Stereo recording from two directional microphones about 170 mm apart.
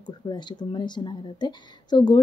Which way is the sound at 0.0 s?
25° left (ahead or behind).